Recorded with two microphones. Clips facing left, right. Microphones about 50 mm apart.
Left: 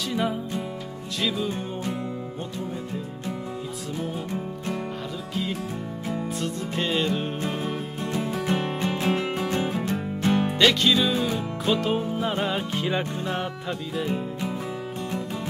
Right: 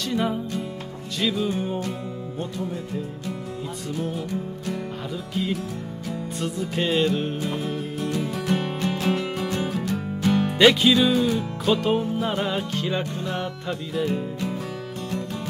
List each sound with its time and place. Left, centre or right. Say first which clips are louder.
0.1 s music: right 2 dB; centre
5.3 s music: right 2 dB; centre
7.4 s music: right 1 dB; left
10.6 s music: right 5 dB; centre
11.1 s music: right 3 dB; centre
11.7 s music: right 3 dB; centre
12.4 s music: right 1 dB; centre
13.7 s music: right 4 dB; centre